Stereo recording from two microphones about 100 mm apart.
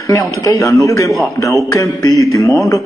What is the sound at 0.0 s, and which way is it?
Speech, 35° left (ahead or behind).